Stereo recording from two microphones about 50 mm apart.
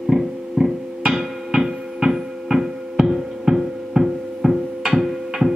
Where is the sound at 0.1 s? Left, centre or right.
Centre.